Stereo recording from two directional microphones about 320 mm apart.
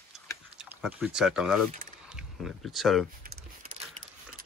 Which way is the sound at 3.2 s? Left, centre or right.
Right.